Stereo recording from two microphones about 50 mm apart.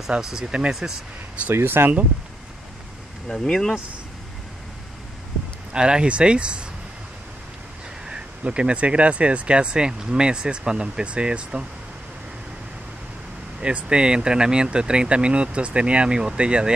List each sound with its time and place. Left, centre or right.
0.1 s speech: centre
1.5 s speech: right
3.3 s speech: centre
5.7 s speech: centre
8.1 s speech: right
13.6 s speech: centre